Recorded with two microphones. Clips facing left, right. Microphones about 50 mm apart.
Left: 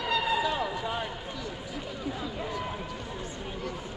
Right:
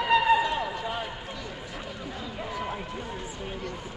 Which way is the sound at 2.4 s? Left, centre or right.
Centre.